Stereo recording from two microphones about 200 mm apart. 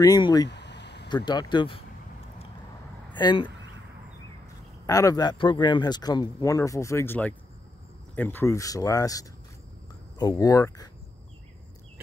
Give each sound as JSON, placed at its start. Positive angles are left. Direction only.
{"t": 0.0, "sound": "speech", "side_deg": 20}
{"t": 0.5, "sound": "a sound", "side_deg": 60}
{"t": 1.0, "sound": "speech", "side_deg": 20}
{"t": 3.2, "sound": "speech", "side_deg": 25}
{"t": 4.8, "sound": "speech", "side_deg": 15}